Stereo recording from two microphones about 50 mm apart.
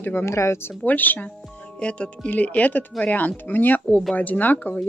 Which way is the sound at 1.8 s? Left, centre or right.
Left.